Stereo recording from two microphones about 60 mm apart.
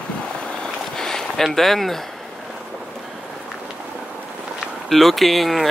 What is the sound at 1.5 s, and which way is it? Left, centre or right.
Speech, centre.